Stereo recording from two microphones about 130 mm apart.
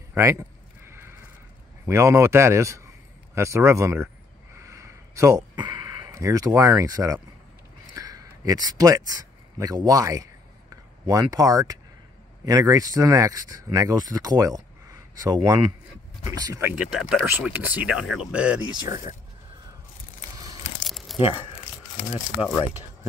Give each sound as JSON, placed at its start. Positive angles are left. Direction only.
{"t": 0.1, "sound": "a sound", "side_deg": -25}
{"t": 1.9, "sound": "speech", "side_deg": -20}
{"t": 4.6, "sound": "a sound", "side_deg": -20}
{"t": 5.6, "sound": "speech", "side_deg": -35}
{"t": 16.7, "sound": "speech", "side_deg": -5}
{"t": 20.8, "sound": "crumpling", "side_deg": 0}
{"t": 21.2, "sound": "speech", "side_deg": 45}